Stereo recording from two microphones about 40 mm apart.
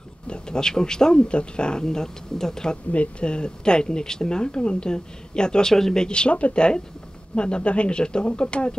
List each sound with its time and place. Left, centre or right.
0.3 s speech: centre
2.9 s speech: left; by 6.0 s centre
6.0 s speech: left